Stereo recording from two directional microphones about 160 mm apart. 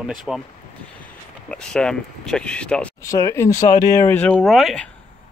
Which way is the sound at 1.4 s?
5° left (ahead or behind).